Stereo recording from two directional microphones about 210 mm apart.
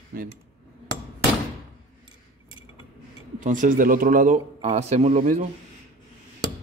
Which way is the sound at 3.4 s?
40° right (ahead or behind).